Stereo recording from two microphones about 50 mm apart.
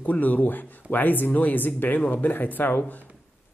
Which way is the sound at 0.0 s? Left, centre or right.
Left.